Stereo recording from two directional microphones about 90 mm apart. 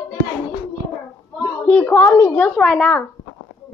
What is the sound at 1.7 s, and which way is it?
A woman's voice, 20° left (ahead or behind).